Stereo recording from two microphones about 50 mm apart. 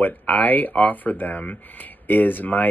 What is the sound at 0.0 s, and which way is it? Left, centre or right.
Speech, left.